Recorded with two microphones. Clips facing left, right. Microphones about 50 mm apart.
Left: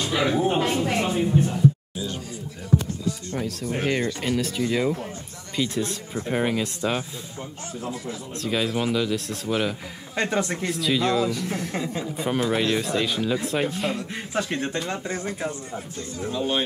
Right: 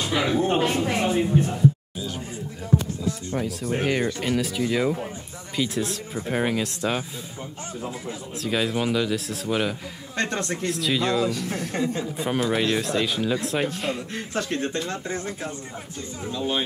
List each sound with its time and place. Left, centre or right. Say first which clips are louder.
0.0 s a sound: left 1 dB; centre
0.3 s speech: right 1 dB; centre
0.6 s speech: even; centre
3.3 s speech: right 4 dB; centre
7.8 s speech: left 1 dB; right
8.4 s speech: even; centre
14.1 s speech: even; centre